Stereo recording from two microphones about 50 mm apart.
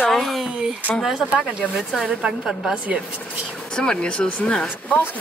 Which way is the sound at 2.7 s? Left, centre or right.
Right.